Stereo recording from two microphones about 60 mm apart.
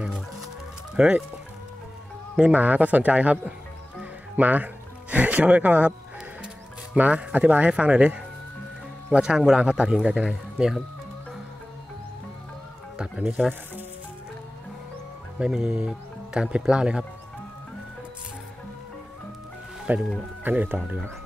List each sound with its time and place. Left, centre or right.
0.9 s speech: centre
2.3 s a man's voice: right
4.0 s music: right
5.1 s a man's voice: right
7.0 s a man's voice: right
12.9 s music: centre
15.3 s speech: centre
19.9 s a man's voice: right